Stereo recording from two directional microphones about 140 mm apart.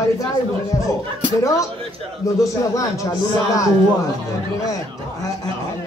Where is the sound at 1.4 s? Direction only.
20° left (ahead or behind).